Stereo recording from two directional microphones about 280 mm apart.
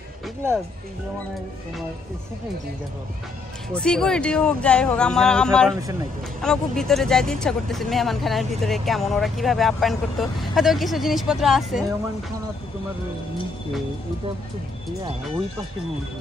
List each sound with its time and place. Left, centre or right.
3.7 s speech: centre